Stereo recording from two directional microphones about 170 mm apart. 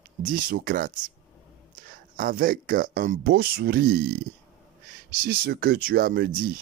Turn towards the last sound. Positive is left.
turn(degrees=-55)  # may be behind; listen again after turning